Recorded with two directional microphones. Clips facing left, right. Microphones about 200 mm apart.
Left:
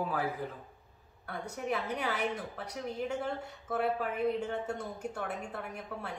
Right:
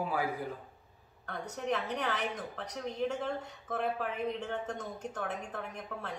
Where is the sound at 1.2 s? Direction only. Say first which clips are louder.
Right 1 dB; 10° left (ahead or behind).